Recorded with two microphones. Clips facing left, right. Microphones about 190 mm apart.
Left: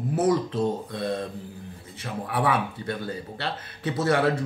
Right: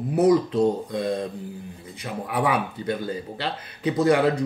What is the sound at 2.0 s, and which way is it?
Speech, 20° right (ahead or behind).